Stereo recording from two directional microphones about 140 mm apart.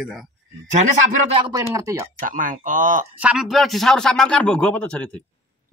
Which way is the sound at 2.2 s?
70° right (ahead or behind).